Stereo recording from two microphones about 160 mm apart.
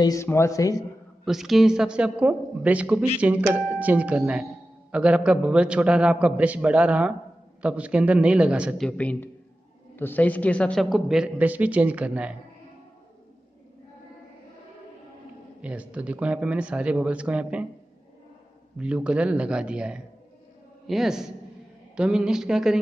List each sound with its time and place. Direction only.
0.0 s a man's voice: 20° left (ahead or behind)
1.2 s a man's voice: centre (ahead or behind)
8.8 s a man's voice: 10° left (ahead or behind); by 12.4 s 10° right (ahead or behind)
15.6 s a man's voice: 10° right (ahead or behind)
18.8 s a man's voice: 5° right (ahead or behind)